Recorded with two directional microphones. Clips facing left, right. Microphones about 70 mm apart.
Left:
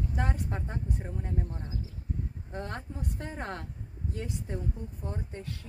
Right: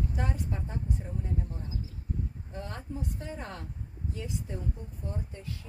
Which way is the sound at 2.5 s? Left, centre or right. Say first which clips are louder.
Left 2 dB; left.